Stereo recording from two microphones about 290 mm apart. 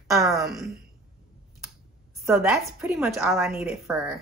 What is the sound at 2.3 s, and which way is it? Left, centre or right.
Speech, centre.